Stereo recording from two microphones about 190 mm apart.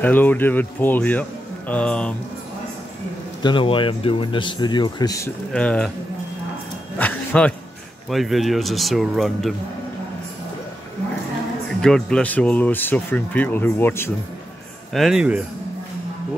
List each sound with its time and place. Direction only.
0.0 s speech: 10° left (ahead or behind)
3.4 s speech: 25° left (ahead or behind)
5.5 s speech: 5° left (ahead or behind)
7.0 s a sound: 5° left (ahead or behind)
8.1 s speech: centre (ahead or behind)
11.8 s speech: 5° left (ahead or behind)
14.9 s speech: centre (ahead or behind)